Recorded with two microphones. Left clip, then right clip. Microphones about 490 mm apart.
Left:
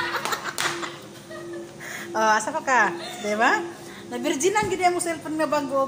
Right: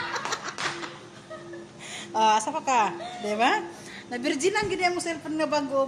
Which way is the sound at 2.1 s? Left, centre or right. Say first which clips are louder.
Left 1 dB; right.